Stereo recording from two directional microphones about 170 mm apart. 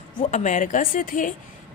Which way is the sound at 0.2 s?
45° left (ahead or behind).